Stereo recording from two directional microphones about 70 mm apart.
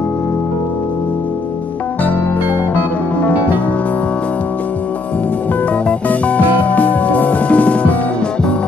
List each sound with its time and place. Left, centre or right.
2.7 s music: left
5.9 s music: centre